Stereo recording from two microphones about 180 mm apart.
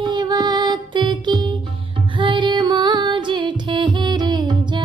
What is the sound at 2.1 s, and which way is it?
Music, 25° right (ahead or behind).